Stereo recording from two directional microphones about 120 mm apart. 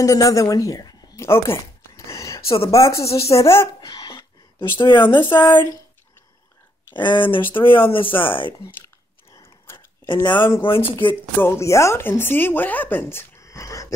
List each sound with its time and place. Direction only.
0.0 s a woman's voice: 30° left (ahead or behind)
2.0 s a sound: 25° left (ahead or behind)
2.4 s speech: 50° left (ahead or behind)
2.7 s speech: 25° left (ahead or behind)
3.3 s a sound: 25° left (ahead or behind); by 4.6 s 40° left (ahead or behind)
4.7 s speech: 40° left (ahead or behind)
7.0 s speech: 45° left (ahead or behind)
8.6 s chewing: 25° left (ahead or behind)
10.3 s speech: 15° left (ahead or behind)
10.6 s speech: 50° left (ahead or behind)
11.3 s speech: 20° left (ahead or behind)